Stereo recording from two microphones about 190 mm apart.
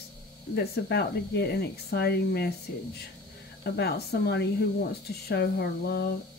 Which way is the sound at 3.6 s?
55° left (ahead or behind).